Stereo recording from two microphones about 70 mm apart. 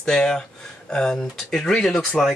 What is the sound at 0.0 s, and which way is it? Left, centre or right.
Speech, centre.